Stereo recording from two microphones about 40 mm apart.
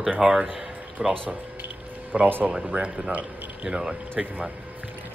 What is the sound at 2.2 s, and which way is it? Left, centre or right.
Speech, right.